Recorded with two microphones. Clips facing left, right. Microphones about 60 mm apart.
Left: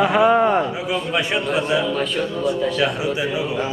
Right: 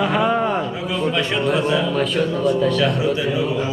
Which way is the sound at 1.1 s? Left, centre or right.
Centre.